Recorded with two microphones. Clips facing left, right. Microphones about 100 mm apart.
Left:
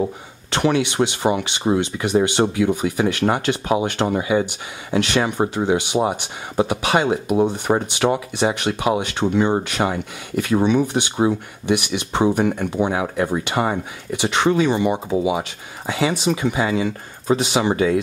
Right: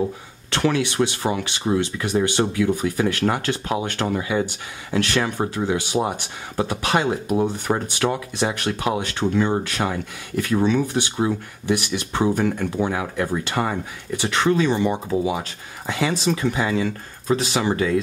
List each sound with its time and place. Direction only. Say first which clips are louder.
0.5 s speech: left 2 dB; 20° left (ahead or behind)
4.0 s speech: left 3 dB; 25° left (ahead or behind)